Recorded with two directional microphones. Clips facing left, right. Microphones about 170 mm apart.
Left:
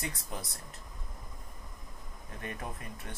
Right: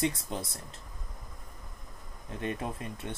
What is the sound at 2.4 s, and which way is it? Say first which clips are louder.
Speech: right 6 dB; 25° right (ahead or behind).